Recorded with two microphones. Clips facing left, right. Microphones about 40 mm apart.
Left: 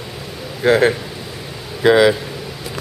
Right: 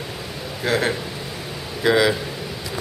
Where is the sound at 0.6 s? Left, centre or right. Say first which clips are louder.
Left 8 dB; centre.